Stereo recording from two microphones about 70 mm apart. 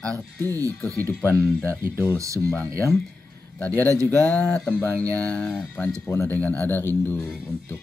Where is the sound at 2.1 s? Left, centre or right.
Right.